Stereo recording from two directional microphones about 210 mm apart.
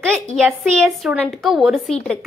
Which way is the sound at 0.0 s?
5° left (ahead or behind).